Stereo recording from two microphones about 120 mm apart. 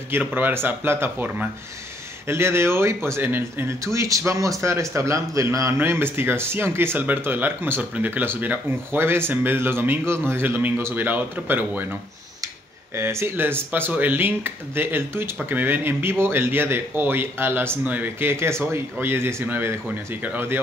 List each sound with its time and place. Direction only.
0.1 s speech: 15° right (ahead or behind)
12.9 s speech: 20° right (ahead or behind)